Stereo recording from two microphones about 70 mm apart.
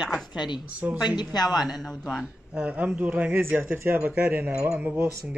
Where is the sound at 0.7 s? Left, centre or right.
Right.